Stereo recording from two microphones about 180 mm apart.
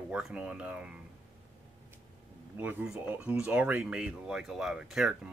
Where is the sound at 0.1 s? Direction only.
5° right (ahead or behind).